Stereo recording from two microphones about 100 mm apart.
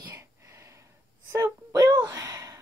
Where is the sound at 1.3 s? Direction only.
25° right (ahead or behind).